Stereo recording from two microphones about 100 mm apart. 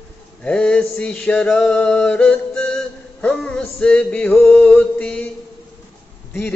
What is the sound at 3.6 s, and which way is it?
Male singing, 10° left (ahead or behind).